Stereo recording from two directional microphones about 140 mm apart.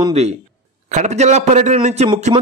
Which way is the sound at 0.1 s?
50° right (ahead or behind).